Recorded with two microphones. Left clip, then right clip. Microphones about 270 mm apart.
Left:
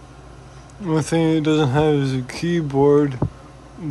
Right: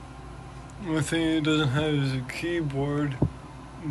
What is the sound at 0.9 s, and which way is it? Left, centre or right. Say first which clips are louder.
Speech: left 7 dB; centre.